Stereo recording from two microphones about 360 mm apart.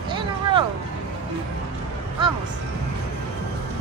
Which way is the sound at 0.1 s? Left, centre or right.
Centre.